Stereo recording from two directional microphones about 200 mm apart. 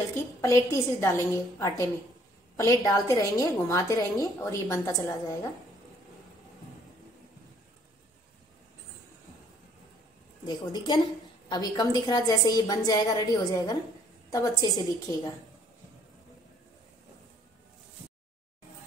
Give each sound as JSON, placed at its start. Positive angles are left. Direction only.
{"t": 0.1, "sound": "a woman's voice", "side_deg": 15}
{"t": 10.4, "sound": "a woman's voice", "side_deg": 20}